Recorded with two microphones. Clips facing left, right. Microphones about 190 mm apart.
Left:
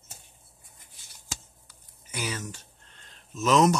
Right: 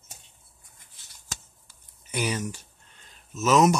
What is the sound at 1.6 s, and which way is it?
Speech, 20° right (ahead or behind).